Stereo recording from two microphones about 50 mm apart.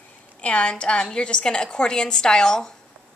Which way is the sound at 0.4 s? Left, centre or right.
Left.